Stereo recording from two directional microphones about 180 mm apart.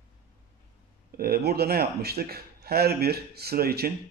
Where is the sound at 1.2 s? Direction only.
60° right (ahead or behind).